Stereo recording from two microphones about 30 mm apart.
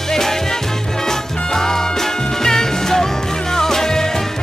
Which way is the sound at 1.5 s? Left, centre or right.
Centre.